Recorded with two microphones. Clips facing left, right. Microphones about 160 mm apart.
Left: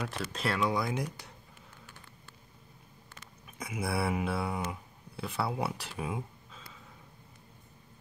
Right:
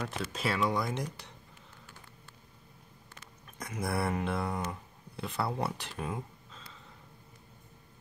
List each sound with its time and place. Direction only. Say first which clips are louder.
0.0 s speech: even; centre (ahead or behind)
3.5 s speech: even; 5° left (ahead or behind)